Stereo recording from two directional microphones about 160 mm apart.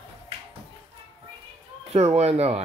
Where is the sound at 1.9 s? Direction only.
40° right (ahead or behind).